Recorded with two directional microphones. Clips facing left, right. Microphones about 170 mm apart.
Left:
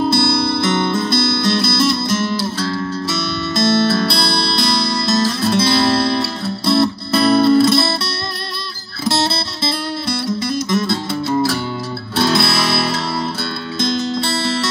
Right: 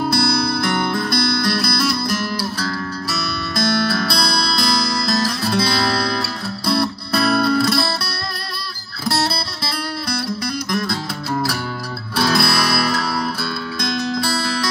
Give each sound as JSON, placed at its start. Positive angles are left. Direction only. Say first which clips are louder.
{"t": 0.0, "sound": "music", "louder": "left 3 dB", "side_deg": 25}
{"t": 9.0, "sound": "music", "louder": "left 3 dB", "side_deg": 25}